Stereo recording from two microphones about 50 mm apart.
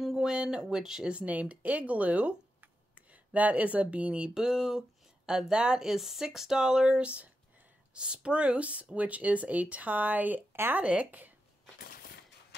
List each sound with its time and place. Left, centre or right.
0.0 s a sound: centre
0.4 s speech: centre
1.1 s speech: right
4.3 s speech: centre; by 10.4 s right
10.5 s a sound: right
10.8 s speech: right
11.1 s speech: right